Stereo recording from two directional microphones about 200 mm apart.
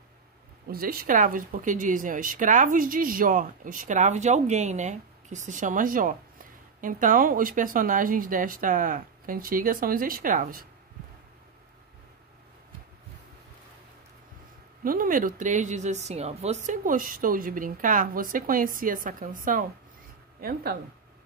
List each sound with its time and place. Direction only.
0.7 s speech: 45° right (ahead or behind)
14.8 s speech: 45° right (ahead or behind)